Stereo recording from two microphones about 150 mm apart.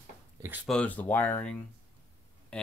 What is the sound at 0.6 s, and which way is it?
Speech, 5° left (ahead or behind).